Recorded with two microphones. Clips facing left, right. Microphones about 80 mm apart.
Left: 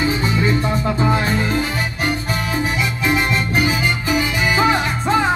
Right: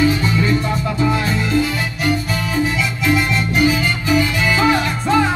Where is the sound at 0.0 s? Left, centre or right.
Left.